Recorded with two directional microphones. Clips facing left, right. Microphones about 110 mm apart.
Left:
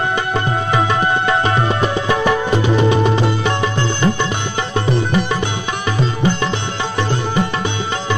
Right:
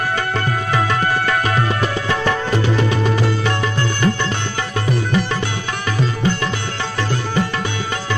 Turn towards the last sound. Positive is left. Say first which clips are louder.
# left 2 dB
turn(degrees=20)  # may be behind; listen again after turning